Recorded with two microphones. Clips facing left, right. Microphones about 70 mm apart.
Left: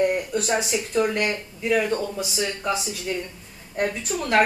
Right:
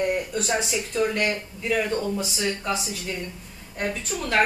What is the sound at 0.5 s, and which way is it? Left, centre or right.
Speech, centre.